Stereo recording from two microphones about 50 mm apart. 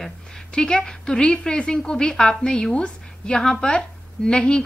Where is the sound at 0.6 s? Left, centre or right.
Centre.